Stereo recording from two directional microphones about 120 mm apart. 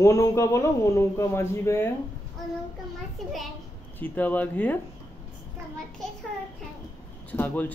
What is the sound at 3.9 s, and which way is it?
Speech, 15° left (ahead or behind).